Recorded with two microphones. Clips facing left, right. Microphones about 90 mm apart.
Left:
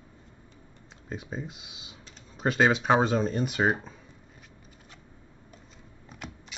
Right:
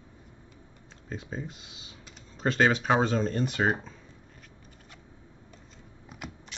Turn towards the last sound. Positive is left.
turn(degrees=-5)  # may be behind; listen again after turning